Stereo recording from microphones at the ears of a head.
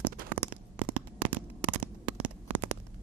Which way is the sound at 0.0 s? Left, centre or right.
Right.